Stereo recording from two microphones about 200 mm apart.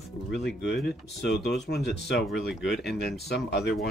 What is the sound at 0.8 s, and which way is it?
Speech, 60° left (ahead or behind).